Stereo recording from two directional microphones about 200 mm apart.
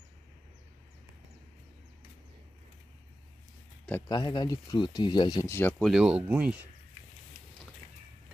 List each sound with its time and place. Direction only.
4.1 s speech: 20° left (ahead or behind); by 6.7 s 10° right (ahead or behind)